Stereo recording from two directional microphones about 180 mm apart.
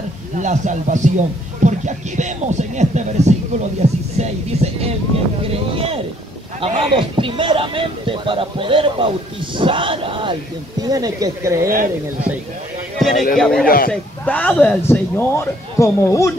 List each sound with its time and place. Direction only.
0.4 s a man's voice: 40° right (ahead or behind); by 11.7 s 15° right (ahead or behind)
13.4 s a man's voice: 5° left (ahead or behind)
13.7 s a man's voice: 55° left (ahead or behind)
14.2 s speech: 10° left (ahead or behind)